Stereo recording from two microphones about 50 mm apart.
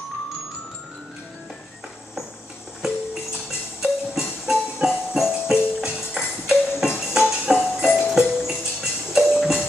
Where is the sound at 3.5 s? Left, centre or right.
Centre.